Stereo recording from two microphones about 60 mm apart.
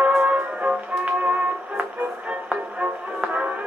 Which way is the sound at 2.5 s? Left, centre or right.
Right.